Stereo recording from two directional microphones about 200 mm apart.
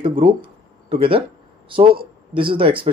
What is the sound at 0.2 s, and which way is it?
Speech, 25° right (ahead or behind).